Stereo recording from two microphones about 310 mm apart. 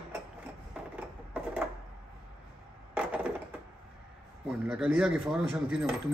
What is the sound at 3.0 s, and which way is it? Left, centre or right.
Coin, centre.